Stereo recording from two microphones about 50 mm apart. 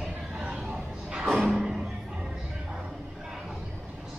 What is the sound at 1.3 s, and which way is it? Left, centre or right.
Music, centre.